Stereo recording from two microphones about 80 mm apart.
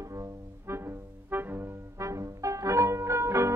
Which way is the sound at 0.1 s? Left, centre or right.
Right.